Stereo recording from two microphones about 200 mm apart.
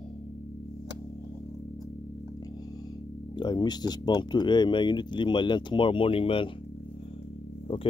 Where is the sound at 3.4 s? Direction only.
20° left (ahead or behind).